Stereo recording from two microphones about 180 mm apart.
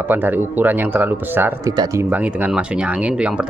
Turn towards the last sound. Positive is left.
turn(degrees=-5)  # may be behind; listen again after turning